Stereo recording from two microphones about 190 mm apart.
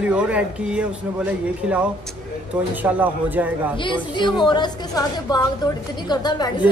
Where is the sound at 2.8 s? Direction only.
10° right (ahead or behind).